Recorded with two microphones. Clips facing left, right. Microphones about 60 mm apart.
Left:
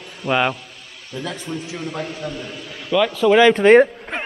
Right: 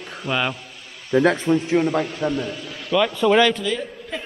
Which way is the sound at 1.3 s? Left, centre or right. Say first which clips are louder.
Right 10 dB; right.